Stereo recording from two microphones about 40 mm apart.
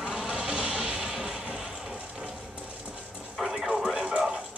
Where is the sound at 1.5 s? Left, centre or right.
Centre.